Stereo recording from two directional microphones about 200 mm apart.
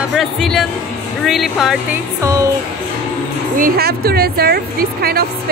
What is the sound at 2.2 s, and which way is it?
Music, 15° right (ahead or behind).